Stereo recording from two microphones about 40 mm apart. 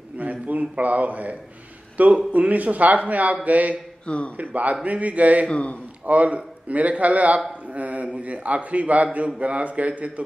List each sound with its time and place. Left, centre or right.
0.2 s a sound: right
2.0 s a man's voice: right
4.0 s a man's voice: left
4.4 s a man's voice: right
5.5 s a man's voice: left
6.0 s a man's voice: right